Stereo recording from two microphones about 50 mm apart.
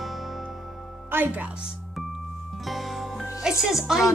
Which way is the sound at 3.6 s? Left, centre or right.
Centre.